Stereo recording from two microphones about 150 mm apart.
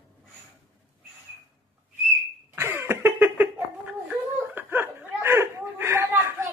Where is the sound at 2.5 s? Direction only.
15° right (ahead or behind).